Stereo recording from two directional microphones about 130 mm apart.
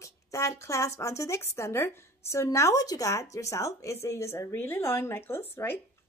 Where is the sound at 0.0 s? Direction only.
25° left (ahead or behind).